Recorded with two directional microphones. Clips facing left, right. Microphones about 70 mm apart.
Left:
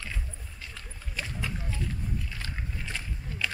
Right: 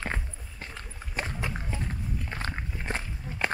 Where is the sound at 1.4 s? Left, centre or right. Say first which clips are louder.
Right 1 dB; right.